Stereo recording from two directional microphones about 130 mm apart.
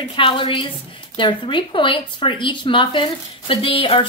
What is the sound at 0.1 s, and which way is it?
A woman's voice, 40° left (ahead or behind).